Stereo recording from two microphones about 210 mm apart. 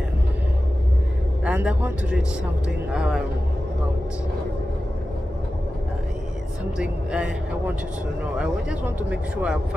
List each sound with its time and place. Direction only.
1.4 s speech: 5° right (ahead or behind)
6.8 s speech: 5° right (ahead or behind)